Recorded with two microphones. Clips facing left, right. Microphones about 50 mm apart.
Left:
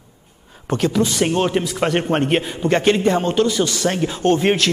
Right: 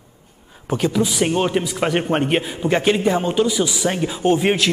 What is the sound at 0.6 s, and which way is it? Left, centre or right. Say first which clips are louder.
A man's voice: left 1 dB; centre.